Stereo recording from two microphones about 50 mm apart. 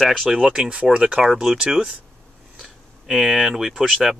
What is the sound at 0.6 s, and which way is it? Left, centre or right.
Speech, right.